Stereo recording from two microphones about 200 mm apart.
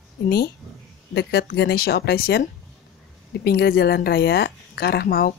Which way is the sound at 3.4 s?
50° left (ahead or behind).